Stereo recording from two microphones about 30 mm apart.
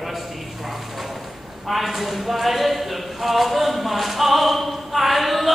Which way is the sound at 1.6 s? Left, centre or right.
Centre.